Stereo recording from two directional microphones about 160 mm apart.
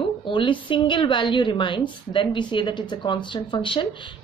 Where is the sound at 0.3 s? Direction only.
30° left (ahead or behind).